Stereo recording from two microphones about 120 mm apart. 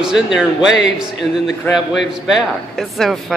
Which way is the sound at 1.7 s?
5° right (ahead or behind).